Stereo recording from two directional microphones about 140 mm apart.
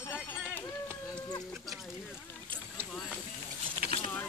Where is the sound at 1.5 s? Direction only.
Centre (ahead or behind).